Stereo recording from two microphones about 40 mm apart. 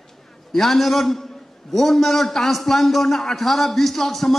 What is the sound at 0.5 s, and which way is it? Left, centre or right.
A man's voice, centre.